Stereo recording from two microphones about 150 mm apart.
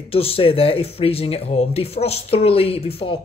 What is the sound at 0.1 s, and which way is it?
Speech, 40° left (ahead or behind).